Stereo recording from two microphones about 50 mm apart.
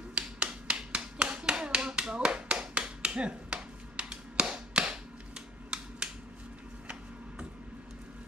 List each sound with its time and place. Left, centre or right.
0.1 s finger snapping: right